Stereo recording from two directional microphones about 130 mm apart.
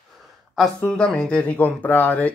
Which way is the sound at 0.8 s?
5° left (ahead or behind).